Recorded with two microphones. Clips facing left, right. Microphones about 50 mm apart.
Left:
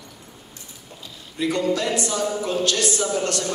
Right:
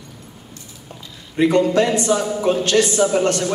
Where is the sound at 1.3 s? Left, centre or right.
Right.